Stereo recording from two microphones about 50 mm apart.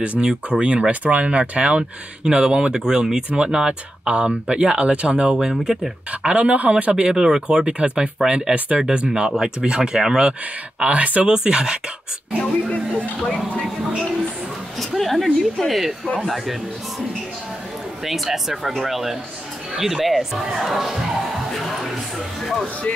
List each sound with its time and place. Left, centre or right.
0.2 s speech: right
6.2 s speech: right
7.0 s speech: centre
10.8 s speech: right
11.2 s speech: centre
12.6 s speech: left
15.0 s speech: centre
18.0 s speech: centre
21.5 s music: centre
22.4 s speech: centre